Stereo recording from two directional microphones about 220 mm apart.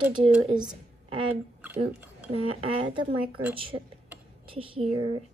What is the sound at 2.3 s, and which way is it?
Speech, 25° right (ahead or behind).